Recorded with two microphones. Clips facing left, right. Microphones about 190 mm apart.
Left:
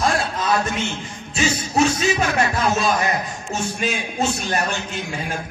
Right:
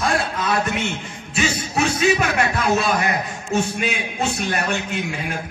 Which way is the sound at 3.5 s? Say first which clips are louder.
Right 5 dB; 60° right (ahead or behind).